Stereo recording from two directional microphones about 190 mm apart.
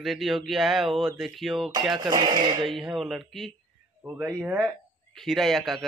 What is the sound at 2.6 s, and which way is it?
Speech, centre (ahead or behind).